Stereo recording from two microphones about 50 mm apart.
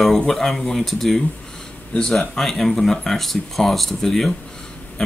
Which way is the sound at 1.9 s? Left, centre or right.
Centre.